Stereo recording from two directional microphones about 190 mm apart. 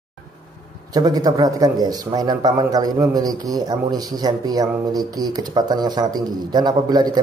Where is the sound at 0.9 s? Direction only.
20° right (ahead or behind).